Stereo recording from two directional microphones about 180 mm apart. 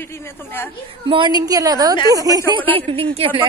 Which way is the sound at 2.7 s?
30° right (ahead or behind).